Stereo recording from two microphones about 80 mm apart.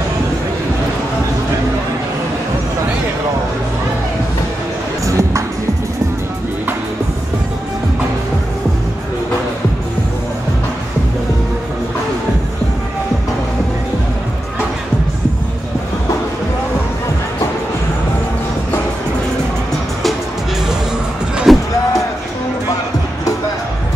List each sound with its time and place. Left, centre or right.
5.0 s music: right
21.5 s music: centre